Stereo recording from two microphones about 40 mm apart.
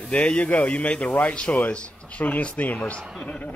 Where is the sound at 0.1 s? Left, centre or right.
Left.